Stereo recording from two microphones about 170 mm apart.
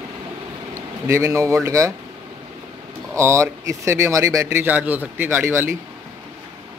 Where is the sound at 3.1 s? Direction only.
15° right (ahead or behind).